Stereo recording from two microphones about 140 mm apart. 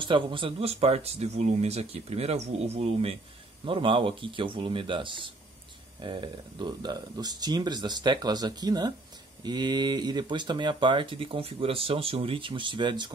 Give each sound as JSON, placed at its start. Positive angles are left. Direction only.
{"t": 0.0, "sound": "speech", "side_deg": -35}